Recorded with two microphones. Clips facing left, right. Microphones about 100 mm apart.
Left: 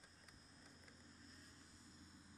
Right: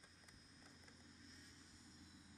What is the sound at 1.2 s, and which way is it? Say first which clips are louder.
Vehicle: even; 45° left (ahead or behind).